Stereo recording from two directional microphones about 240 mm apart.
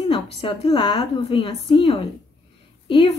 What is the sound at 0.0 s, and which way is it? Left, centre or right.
Speech, left.